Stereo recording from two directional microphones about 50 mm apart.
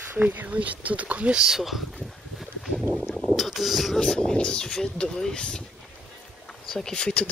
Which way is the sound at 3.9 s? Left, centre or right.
Centre.